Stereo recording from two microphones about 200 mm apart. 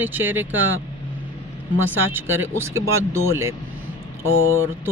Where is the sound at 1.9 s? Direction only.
10° right (ahead or behind).